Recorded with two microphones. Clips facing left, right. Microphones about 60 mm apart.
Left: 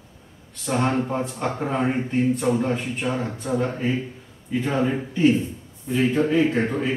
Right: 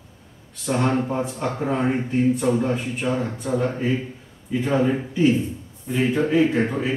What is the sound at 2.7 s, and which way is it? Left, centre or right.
Speech, left.